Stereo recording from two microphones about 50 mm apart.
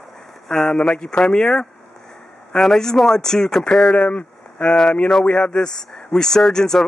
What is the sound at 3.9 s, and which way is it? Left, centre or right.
Speech, left.